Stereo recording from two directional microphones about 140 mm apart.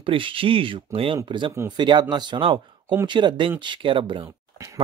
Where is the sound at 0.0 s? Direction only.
40° right (ahead or behind).